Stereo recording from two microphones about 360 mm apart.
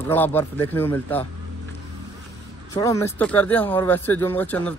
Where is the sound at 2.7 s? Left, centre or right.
Centre.